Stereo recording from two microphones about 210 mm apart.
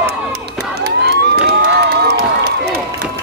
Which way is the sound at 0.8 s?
50° right (ahead or behind).